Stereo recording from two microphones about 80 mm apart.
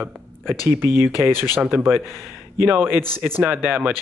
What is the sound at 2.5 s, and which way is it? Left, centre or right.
Speech, right.